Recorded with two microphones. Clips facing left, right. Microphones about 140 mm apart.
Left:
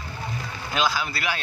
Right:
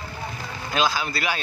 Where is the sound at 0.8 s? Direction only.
Centre (ahead or behind).